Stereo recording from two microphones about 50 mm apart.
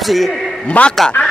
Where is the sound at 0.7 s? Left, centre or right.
Left.